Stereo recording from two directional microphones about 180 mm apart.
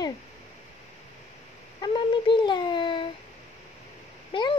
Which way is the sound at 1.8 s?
25° left (ahead or behind).